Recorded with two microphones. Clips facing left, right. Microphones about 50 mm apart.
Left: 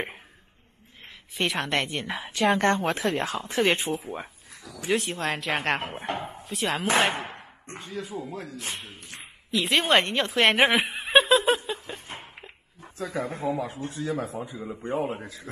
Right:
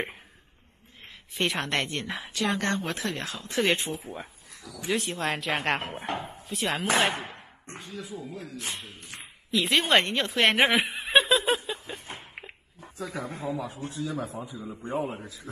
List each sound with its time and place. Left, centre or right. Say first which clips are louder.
1.3 s speech: left 1 dB; centre
2.3 s speech: left 6 dB; left
2.9 s speech: left 6 dB; centre
4.1 s a sound: left 3 dB; left
4.8 s speech: left 2 dB; centre
7.8 s speech: left 4 dB; left
9.1 s a sound: even; centre
13.0 s speech: left 4 dB; left